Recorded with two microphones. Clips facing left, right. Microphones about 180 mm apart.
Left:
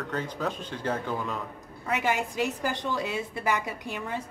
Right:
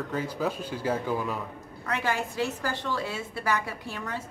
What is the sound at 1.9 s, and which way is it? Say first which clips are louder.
A woman's voice: left 2 dB; 15° left (ahead or behind).